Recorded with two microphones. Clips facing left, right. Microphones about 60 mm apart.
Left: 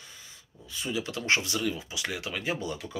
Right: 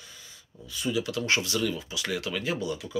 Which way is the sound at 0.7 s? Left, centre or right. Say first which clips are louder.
Right 4 dB; left.